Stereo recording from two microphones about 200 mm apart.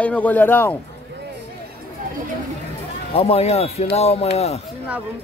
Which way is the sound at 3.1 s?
30° left (ahead or behind).